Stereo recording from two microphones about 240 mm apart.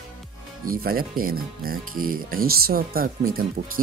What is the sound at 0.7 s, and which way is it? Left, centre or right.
Speech, right.